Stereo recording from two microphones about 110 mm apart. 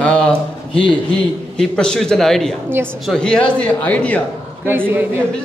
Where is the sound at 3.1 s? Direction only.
5° left (ahead or behind).